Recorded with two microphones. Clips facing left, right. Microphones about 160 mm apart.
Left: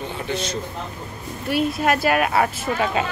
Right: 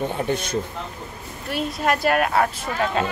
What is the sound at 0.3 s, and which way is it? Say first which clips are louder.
Speech: right 2 dB; 55° right (ahead or behind).